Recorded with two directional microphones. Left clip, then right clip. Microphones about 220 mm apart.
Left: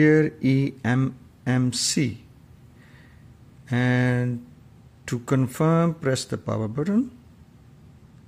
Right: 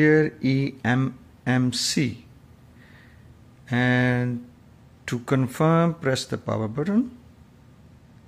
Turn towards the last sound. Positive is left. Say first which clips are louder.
# right 1 dB
turn(degrees=20)  # may be behind; listen again after turning